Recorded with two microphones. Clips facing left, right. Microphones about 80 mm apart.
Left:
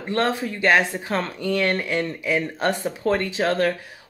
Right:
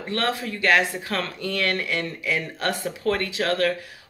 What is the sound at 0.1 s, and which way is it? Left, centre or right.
Speech, left.